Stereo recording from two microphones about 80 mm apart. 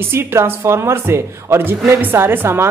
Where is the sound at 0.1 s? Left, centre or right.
Right.